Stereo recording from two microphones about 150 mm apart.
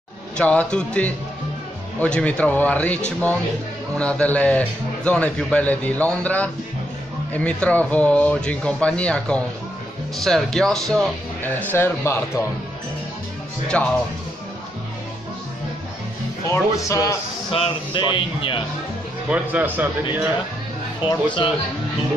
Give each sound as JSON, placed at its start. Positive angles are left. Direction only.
{"t": 0.4, "sound": "a man's voice", "side_deg": 5}
{"t": 4.0, "sound": "a man's voice", "side_deg": 10}
{"t": 11.4, "sound": "a man's voice", "side_deg": 15}
{"t": 13.7, "sound": "a man's voice", "side_deg": 10}
{"t": 16.4, "sound": "speech", "side_deg": 20}
{"t": 17.5, "sound": "speech", "side_deg": 35}
{"t": 19.2, "sound": "a man's voice", "side_deg": -10}
{"t": 21.0, "sound": "speech", "side_deg": 35}